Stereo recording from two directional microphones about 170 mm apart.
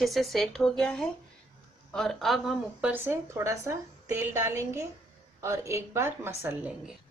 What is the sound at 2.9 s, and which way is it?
A woman's voice, 15° right (ahead or behind).